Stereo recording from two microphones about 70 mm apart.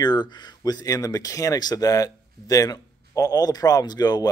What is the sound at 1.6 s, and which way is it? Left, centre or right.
A man's voice, left.